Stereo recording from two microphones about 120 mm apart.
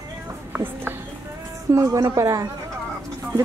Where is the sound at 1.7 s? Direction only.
25° right (ahead or behind).